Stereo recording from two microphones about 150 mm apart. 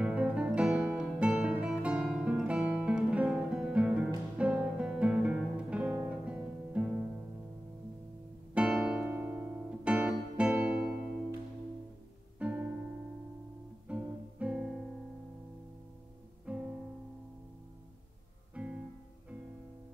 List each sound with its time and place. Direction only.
0.0 s music: 10° right (ahead or behind)
8.5 s music: 5° right (ahead or behind)
12.4 s music: 10° right (ahead or behind)
13.8 s music: 10° right (ahead or behind)
16.5 s music: 5° right (ahead or behind)
18.5 s music: 10° right (ahead or behind)